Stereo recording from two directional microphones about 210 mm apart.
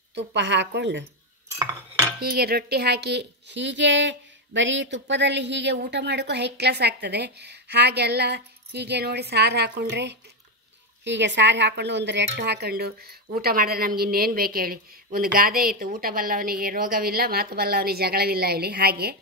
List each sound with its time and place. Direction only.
0.1 s a woman's voice: 55° right (ahead or behind)
1.6 s cutlery: 15° right (ahead or behind)
2.1 s speech: 50° right (ahead or behind)